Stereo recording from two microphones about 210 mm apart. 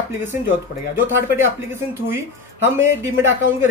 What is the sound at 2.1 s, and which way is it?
Speech, 10° right (ahead or behind).